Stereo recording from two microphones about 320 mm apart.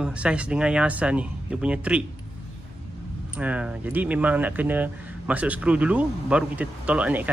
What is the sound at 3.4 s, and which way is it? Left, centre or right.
Speech, centre.